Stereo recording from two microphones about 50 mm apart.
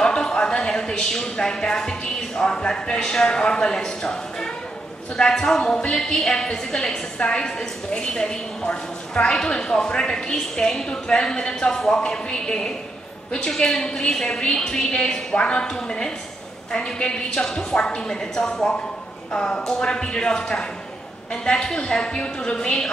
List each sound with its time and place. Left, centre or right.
0.0 s speech: centre